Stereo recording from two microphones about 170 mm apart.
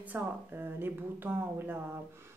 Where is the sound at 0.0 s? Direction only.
10° right (ahead or behind).